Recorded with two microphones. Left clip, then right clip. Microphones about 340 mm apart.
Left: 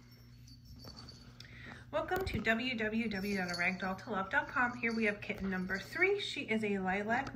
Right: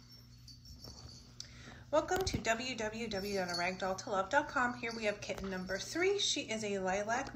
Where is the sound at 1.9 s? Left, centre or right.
Centre.